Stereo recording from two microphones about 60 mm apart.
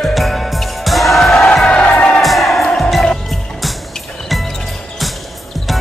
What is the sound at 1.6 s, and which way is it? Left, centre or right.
Music, centre.